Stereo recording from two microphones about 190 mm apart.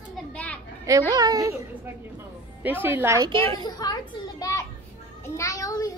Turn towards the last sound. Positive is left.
turn(degrees=20)  # may be behind; listen again after turning